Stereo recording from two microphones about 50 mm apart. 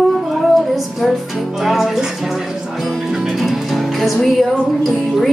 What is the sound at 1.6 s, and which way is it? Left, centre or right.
Music, centre.